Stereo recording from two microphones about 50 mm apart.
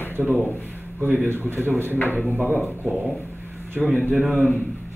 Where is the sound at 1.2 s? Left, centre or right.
Right.